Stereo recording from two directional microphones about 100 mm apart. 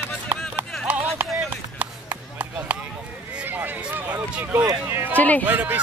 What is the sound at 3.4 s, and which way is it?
Run, 20° right (ahead or behind).